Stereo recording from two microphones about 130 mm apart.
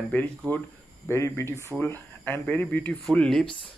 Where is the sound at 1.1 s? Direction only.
20° left (ahead or behind).